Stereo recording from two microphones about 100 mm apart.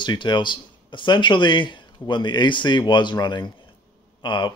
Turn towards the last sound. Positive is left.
turn(degrees=50)  # may be behind; listen again after turning